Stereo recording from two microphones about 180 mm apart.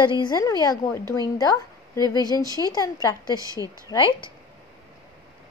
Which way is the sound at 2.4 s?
20° right (ahead or behind).